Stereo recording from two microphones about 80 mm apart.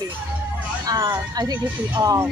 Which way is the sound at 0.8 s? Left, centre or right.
Right.